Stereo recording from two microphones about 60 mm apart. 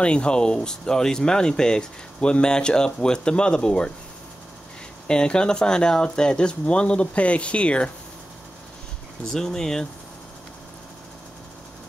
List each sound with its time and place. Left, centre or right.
0.0 s speech: centre
5.0 s speech: centre
9.2 s speech: centre